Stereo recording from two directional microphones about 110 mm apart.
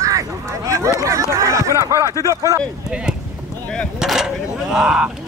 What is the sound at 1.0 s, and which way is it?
Speech, 30° right (ahead or behind).